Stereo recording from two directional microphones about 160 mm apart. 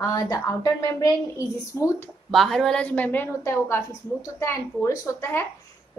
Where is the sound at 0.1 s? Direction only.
20° left (ahead or behind).